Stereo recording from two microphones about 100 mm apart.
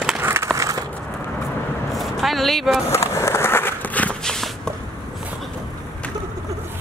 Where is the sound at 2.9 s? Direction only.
25° left (ahead or behind); by 4.4 s 10° left (ahead or behind).